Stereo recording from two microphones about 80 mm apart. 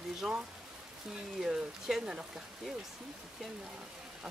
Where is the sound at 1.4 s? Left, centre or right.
Centre.